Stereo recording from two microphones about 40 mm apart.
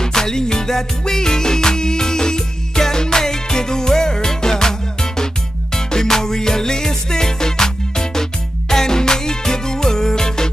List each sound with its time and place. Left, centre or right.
0.0 s music: centre